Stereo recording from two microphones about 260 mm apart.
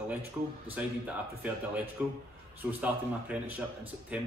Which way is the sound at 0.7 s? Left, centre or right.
Centre.